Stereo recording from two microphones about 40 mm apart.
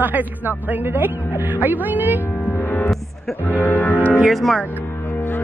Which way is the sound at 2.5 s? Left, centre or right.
Left.